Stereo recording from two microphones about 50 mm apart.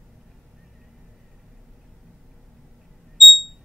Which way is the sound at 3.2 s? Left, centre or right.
Centre.